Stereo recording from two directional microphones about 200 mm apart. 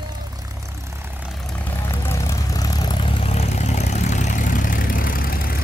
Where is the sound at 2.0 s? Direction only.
15° left (ahead or behind).